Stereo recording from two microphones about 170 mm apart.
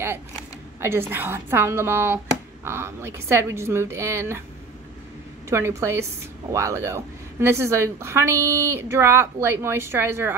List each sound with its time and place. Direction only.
0.7 s a woman's voice: 15° right (ahead or behind)
5.5 s a woman's voice: 15° right (ahead or behind)